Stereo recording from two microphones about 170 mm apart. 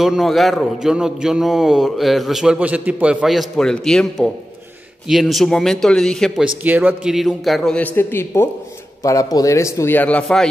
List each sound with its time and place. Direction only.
0.0 s a man's voice: centre (ahead or behind)